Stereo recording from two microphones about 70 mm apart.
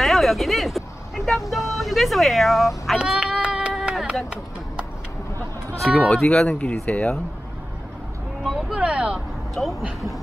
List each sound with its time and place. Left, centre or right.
0.0 s speech: centre
3.7 s run: centre
5.9 s speech: centre
8.5 s speech: centre
8.7 s speech: centre
9.6 s speech: centre